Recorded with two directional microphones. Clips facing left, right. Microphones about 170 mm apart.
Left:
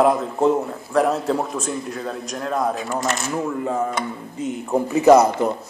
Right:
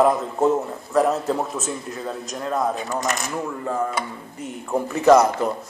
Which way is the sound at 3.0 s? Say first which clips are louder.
Left 1 dB; 15° right (ahead or behind).